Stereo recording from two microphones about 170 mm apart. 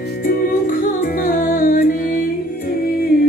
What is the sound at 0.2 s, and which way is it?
Music, 60° left (ahead or behind).